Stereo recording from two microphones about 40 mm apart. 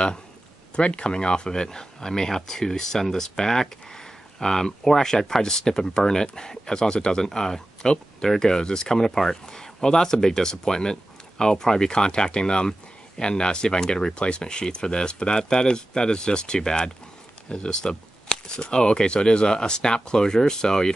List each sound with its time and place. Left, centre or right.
0.7 s speech: left